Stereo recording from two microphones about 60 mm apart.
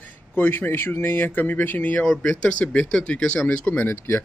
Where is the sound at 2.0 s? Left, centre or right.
Centre.